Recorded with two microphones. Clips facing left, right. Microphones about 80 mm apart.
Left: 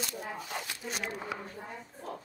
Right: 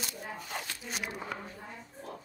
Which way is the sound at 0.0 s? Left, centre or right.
Centre.